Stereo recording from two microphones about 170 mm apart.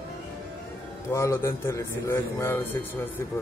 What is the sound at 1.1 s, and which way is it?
A man's voice, 15° left (ahead or behind).